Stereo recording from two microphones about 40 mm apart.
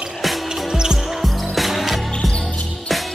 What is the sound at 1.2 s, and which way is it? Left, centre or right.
Music, centre.